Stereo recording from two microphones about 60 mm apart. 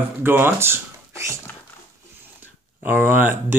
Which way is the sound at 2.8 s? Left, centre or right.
Right.